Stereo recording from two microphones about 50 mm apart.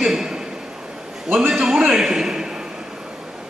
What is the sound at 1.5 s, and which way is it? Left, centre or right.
A man's voice, centre.